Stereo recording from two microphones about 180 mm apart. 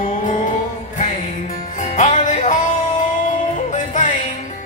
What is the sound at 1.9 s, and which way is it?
Music, 40° left (ahead or behind).